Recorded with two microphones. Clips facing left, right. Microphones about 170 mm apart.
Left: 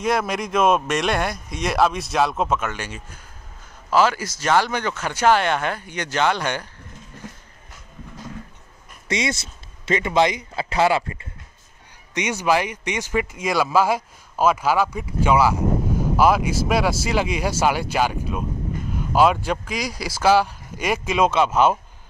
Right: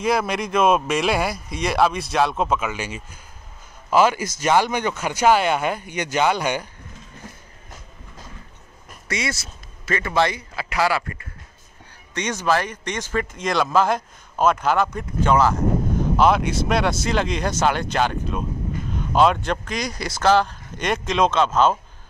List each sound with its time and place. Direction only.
0.0 s speech: centre (ahead or behind)
2.7 s speech: 10° right (ahead or behind)
9.0 s speech: 20° left (ahead or behind)
12.1 s speech: 10° left (ahead or behind)